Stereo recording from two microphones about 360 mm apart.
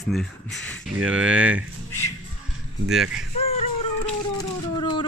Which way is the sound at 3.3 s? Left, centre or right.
Centre.